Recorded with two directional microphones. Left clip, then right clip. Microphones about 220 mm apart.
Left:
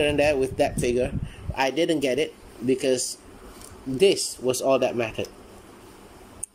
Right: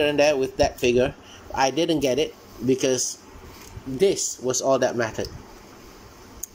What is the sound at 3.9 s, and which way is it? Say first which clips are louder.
Speech: left 1 dB; 5° left (ahead or behind).